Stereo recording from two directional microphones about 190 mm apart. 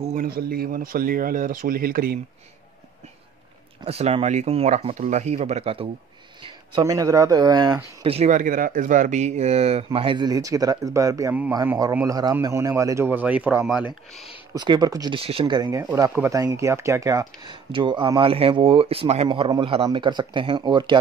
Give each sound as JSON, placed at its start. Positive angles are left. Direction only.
{"t": 0.0, "sound": "speech", "side_deg": -45}
{"t": 3.8, "sound": "speech", "side_deg": -30}
{"t": 6.4, "sound": "speech", "side_deg": -20}
{"t": 14.5, "sound": "speech", "side_deg": -20}